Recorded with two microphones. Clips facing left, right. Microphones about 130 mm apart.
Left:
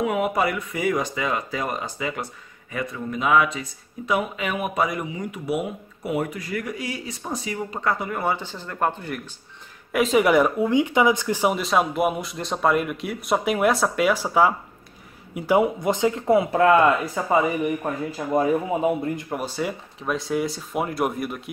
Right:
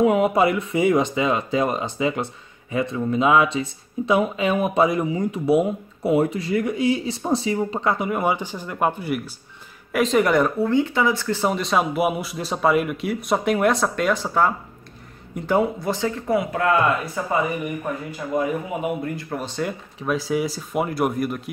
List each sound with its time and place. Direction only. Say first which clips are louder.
0.0 s speech: right 5 dB; 25° right (ahead or behind); by 9.3 s 10° right (ahead or behind)
9.9 s speech: even; 5° left (ahead or behind); by 19.2 s 25° left (ahead or behind)
19.3 s speech: even; 10° left (ahead or behind)